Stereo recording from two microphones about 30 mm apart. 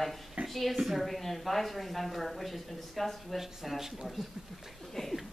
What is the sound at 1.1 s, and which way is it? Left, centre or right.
A woman's voice, centre.